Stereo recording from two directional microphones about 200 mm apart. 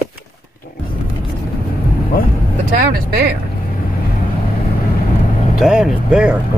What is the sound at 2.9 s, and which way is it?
Speech, 50° right (ahead or behind).